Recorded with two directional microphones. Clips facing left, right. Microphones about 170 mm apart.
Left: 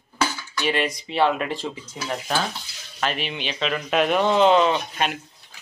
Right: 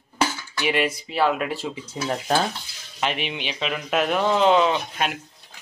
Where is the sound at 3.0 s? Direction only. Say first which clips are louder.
Even; 15° right (ahead or behind).